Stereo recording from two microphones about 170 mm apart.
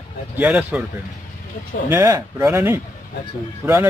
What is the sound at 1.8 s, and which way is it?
Speech, 15° right (ahead or behind).